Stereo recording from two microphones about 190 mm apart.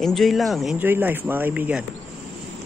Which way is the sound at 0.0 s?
Centre (ahead or behind).